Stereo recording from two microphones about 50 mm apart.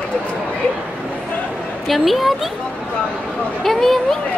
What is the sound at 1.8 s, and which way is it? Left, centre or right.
Speech, centre.